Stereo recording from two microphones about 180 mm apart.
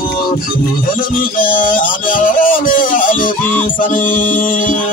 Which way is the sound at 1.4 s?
50° left (ahead or behind).